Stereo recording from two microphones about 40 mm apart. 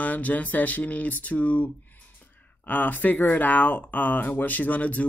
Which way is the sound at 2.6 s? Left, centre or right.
Left.